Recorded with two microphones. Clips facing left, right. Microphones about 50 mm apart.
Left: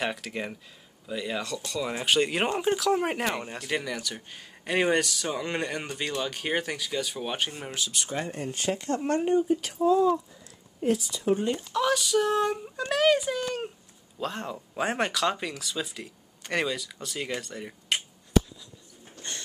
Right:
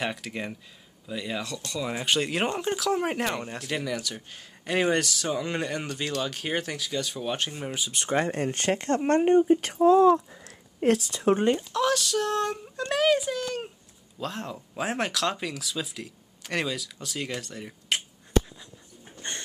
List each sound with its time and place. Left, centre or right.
0.0 s speech: centre
7.9 s speech: right
11.7 s speech: centre
19.2 s a sound: right